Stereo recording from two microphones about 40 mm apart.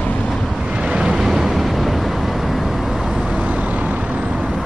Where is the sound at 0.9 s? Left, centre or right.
Right.